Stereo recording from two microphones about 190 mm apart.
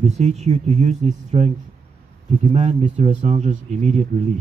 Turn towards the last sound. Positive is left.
turn(degrees=-35)  # may be behind; listen again after turning